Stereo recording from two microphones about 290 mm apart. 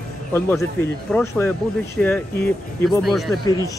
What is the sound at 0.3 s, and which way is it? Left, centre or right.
Speech, centre.